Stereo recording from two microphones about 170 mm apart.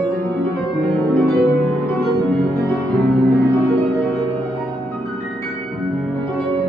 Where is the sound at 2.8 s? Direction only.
Centre (ahead or behind).